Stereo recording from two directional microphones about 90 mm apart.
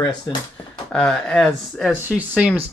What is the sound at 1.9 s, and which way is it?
Speech, 20° right (ahead or behind).